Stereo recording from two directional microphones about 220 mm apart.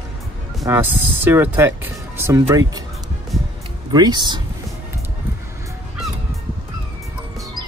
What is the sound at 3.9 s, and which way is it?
Speech, 20° right (ahead or behind).